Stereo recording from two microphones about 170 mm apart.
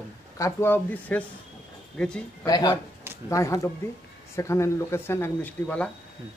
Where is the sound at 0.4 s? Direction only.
15° left (ahead or behind).